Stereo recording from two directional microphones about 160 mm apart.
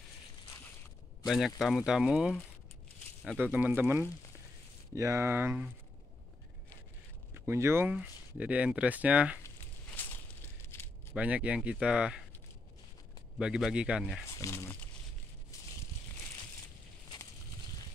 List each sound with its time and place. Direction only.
1.2 s speech: centre (ahead or behind)
7.3 s speech: 15° right (ahead or behind)
10.6 s a sound: 15° left (ahead or behind)
11.1 s speech: 10° right (ahead or behind)
13.4 s speech: 5° right (ahead or behind)
14.3 s speech: 20° left (ahead or behind)
15.5 s a sound: 20° left (ahead or behind)